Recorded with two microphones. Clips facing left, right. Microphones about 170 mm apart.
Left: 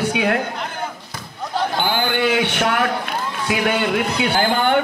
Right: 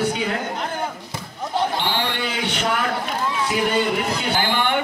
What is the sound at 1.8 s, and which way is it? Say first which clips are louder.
Speech: left 5 dB; 75° left (ahead or behind).